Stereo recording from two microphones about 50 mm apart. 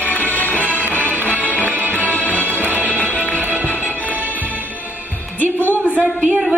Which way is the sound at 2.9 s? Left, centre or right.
Left.